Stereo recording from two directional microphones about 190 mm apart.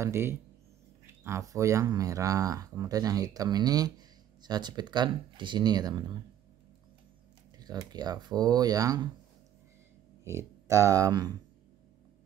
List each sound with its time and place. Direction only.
0.0 s speech: 15° right (ahead or behind)
7.5 s speech: 20° right (ahead or behind)
10.2 s speech: 15° right (ahead or behind)